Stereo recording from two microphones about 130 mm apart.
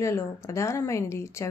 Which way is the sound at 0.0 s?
20° left (ahead or behind).